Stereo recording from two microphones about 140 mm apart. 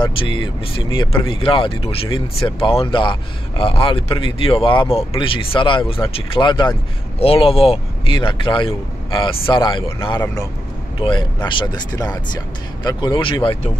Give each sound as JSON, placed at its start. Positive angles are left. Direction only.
{"t": 0.0, "sound": "speech", "side_deg": 35}